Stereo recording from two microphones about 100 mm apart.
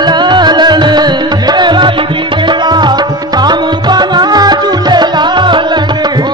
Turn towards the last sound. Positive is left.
turn(degrees=-50)  # may be behind; listen again after turning